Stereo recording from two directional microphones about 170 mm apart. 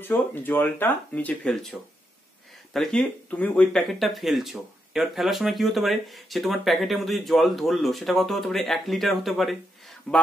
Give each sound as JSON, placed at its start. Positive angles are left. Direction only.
{"t": 0.0, "sound": "speech", "side_deg": 10}